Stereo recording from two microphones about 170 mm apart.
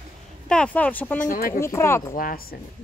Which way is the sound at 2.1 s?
55° left (ahead or behind).